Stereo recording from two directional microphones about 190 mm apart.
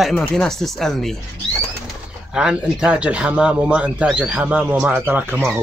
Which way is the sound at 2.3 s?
5° right (ahead or behind).